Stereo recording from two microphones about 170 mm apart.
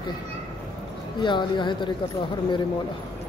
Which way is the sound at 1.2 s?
30° left (ahead or behind).